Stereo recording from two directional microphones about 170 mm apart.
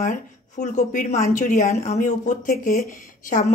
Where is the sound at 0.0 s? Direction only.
45° left (ahead or behind).